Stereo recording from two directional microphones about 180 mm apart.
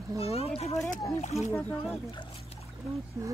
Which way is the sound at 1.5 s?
10° left (ahead or behind).